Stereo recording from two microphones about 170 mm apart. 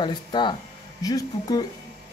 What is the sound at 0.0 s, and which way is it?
Speech, 30° left (ahead or behind).